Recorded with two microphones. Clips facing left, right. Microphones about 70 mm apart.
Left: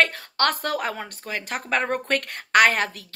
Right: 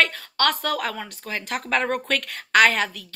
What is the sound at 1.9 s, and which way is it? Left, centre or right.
A woman's voice, left.